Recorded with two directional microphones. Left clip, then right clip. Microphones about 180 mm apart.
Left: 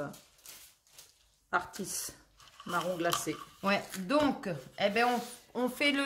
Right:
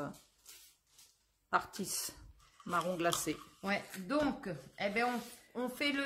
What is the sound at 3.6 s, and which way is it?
Speech, 20° left (ahead or behind).